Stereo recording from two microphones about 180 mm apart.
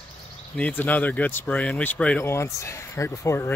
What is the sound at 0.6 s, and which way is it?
Speech, 10° left (ahead or behind).